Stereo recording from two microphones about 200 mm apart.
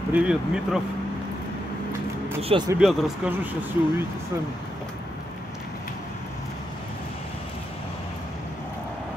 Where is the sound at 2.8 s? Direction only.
5° right (ahead or behind).